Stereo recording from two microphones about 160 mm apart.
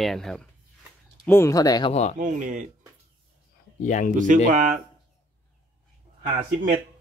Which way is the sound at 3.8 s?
55° left (ahead or behind).